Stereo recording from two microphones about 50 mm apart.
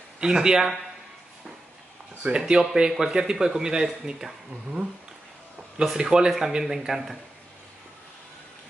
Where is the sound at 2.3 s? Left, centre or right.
Centre.